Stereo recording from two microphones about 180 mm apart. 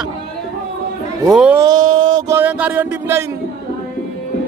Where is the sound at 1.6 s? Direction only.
25° right (ahead or behind).